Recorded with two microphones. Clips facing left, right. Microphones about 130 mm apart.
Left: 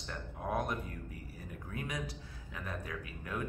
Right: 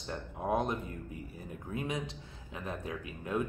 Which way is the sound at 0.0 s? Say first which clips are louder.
Right 4 dB; 25° right (ahead or behind).